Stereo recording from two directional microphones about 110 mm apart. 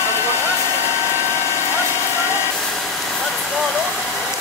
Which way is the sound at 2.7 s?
Centre (ahead or behind).